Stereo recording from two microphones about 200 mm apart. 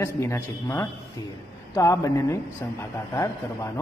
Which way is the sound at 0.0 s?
15° left (ahead or behind).